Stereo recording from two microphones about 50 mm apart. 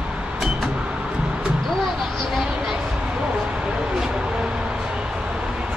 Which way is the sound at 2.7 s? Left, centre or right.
Centre.